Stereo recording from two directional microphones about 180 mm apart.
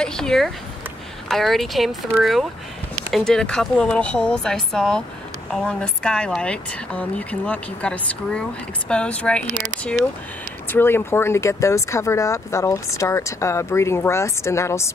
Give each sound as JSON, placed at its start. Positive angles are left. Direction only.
{"t": 0.0, "sound": "speech", "side_deg": 5}